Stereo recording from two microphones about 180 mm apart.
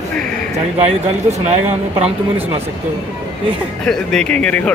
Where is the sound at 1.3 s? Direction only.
35° right (ahead or behind).